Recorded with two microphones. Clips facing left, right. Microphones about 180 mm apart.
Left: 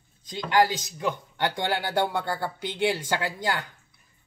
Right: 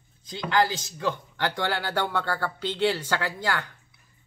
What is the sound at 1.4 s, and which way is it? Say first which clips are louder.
A woman's voice: left 3 dB; 20° left (ahead or behind).